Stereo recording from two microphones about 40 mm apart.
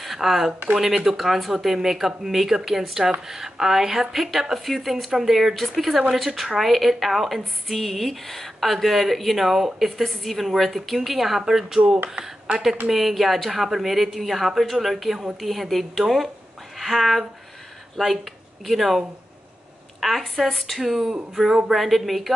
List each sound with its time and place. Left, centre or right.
0.0 s a sound: centre
0.7 s speech: centre
12.2 s speech: right
12.9 s speech: centre
20.8 s speech: centre
21.7 s speech: centre